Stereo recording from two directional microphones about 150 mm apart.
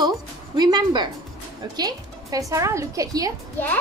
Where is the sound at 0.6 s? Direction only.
30° right (ahead or behind).